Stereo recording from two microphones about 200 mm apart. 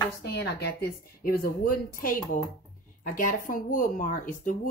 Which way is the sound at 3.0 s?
40° left (ahead or behind).